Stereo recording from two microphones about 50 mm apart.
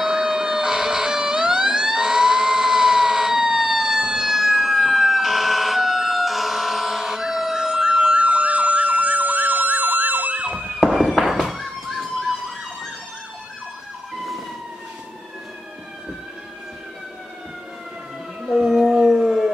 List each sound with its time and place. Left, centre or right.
0.0 s emergency vehicle: centre; by 10.4 s right
10.4 s emergency vehicle: right
10.9 s fireworks: centre
18.5 s howl: centre